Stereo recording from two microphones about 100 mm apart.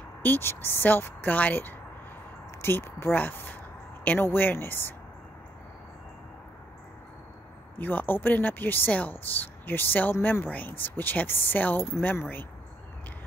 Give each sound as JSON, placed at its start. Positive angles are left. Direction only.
{"t": 0.2, "sound": "speech", "side_deg": 20}
{"t": 7.8, "sound": "speech", "side_deg": 20}